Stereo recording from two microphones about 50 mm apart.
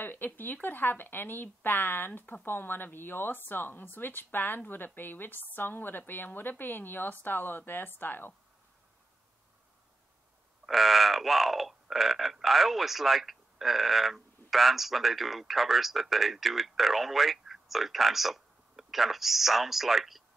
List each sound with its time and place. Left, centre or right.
0.0 s a woman's voice: left
10.6 s speech: centre